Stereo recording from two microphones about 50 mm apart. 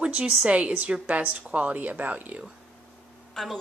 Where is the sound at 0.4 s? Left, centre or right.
Right.